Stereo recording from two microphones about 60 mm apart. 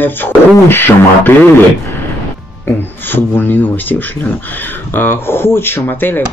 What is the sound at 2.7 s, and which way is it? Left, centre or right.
Speech, left.